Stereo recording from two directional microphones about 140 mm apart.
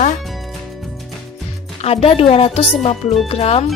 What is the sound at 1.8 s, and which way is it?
Speech, 45° left (ahead or behind).